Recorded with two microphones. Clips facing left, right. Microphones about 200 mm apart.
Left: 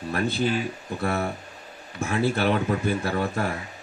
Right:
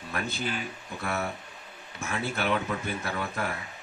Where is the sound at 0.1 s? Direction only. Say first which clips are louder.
Left 8 dB; 35° left (ahead or behind).